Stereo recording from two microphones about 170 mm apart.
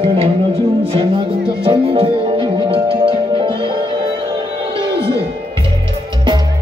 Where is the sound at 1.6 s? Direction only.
35° right (ahead or behind).